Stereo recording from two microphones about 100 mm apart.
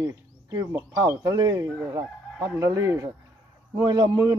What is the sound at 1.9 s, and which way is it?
Fowl, 35° right (ahead or behind).